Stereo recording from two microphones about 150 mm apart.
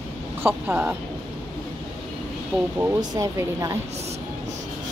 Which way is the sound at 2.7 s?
20° right (ahead or behind).